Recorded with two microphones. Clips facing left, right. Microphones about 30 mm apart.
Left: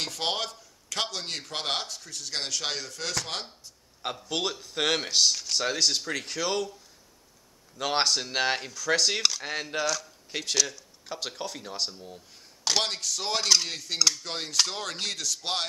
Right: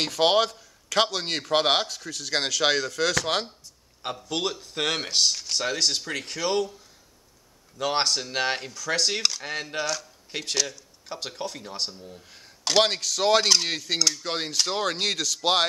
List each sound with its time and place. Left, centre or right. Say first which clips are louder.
0.0 s speech: right 9 dB; right
4.0 s speech: right 1 dB; centre
7.8 s speech: right 1 dB; centre
9.8 s speech: even; centre
12.8 s speech: right 7 dB; right
13.7 s cutlery: right 6 dB; right
14.2 s speech: right 1 dB; right
15.0 s speech: right 5 dB; right